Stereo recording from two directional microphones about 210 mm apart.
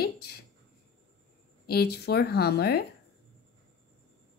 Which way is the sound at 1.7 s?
50° left (ahead or behind).